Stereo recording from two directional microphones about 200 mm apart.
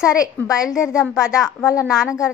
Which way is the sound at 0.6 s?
5° right (ahead or behind).